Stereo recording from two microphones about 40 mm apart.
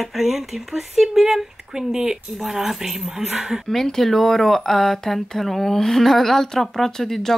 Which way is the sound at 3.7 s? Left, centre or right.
Centre.